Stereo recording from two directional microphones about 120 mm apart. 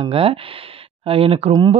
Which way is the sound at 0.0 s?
50° right (ahead or behind).